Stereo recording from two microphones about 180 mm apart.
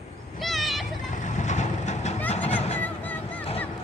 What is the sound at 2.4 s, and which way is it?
Music, 35° left (ahead or behind).